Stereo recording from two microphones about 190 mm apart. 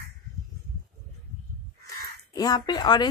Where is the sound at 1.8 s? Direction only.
20° left (ahead or behind).